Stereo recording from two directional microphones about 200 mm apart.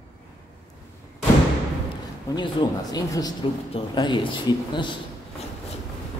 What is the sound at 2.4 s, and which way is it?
Speech, 20° left (ahead or behind).